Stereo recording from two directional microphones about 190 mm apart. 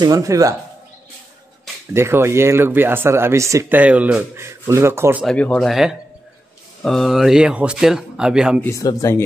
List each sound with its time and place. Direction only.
0.0 s speech: 15° right (ahead or behind)
2.0 s speech: 15° right (ahead or behind)
5.2 s speech: 5° left (ahead or behind)
8.6 s speech: 15° left (ahead or behind)